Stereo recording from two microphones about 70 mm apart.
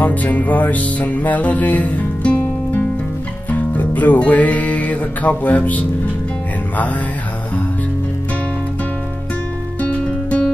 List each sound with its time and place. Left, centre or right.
0.0 s music: left
9.8 s music: centre